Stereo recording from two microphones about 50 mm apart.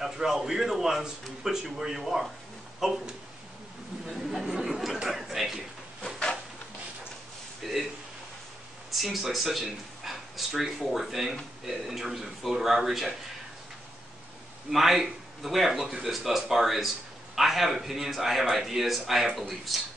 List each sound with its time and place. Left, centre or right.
0.0 s a man's voice: centre
4.1 s speech: centre
5.0 s a sound: centre
7.6 s a sound: centre
8.9 s a man's voice: centre
14.7 s a man's voice: centre